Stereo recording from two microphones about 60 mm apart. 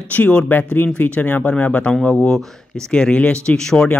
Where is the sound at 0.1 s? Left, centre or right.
Left.